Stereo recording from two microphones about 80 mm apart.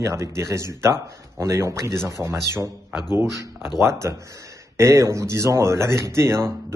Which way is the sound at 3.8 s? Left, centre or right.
Right.